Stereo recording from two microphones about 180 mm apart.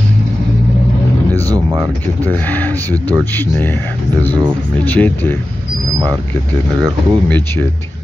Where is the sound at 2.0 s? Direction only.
10° left (ahead or behind).